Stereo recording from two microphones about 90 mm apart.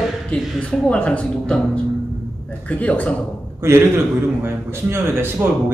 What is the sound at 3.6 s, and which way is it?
A man's voice, 30° right (ahead or behind).